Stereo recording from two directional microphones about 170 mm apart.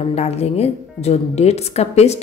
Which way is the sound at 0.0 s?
40° left (ahead or behind).